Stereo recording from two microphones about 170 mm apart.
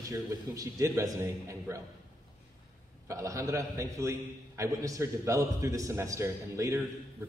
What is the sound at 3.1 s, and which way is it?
A man's voice, 20° right (ahead or behind).